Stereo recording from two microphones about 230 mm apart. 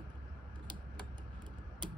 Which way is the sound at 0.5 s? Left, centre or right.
Centre.